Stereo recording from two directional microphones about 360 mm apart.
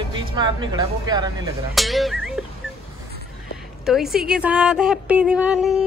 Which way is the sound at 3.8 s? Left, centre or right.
Centre.